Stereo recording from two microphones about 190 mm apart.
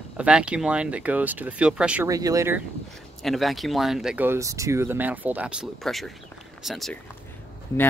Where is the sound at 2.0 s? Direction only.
15° right (ahead or behind).